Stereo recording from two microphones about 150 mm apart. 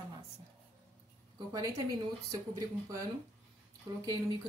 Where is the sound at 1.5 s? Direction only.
25° right (ahead or behind).